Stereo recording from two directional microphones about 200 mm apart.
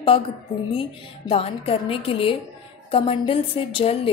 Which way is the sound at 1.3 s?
30° left (ahead or behind).